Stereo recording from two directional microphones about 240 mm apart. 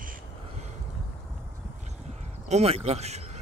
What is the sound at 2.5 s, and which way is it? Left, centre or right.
Speech, right.